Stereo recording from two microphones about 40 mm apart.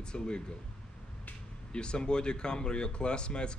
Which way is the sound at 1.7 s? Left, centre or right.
Left.